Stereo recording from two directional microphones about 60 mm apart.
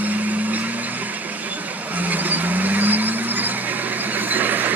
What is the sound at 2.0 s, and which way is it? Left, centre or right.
Vehicle, right.